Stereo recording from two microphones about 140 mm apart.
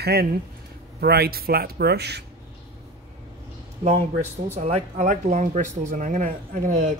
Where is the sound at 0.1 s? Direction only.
90° right.